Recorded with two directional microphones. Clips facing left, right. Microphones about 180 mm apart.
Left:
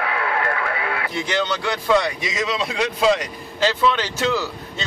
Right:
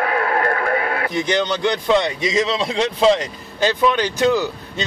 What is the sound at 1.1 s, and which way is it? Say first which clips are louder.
Speech: right 3 dB; 20° right (ahead or behind).